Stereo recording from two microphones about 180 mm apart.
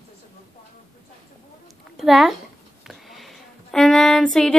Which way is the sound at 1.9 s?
Centre (ahead or behind).